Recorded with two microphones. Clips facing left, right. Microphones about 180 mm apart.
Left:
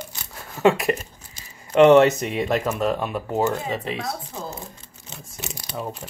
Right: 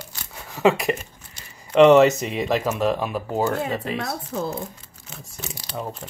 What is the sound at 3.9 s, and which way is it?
Speech, 55° right (ahead or behind).